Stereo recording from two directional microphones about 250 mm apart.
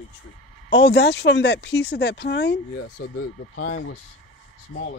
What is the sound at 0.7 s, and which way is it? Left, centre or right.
Speech, left.